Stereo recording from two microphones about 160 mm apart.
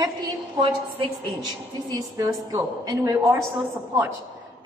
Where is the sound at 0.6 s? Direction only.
30° right (ahead or behind).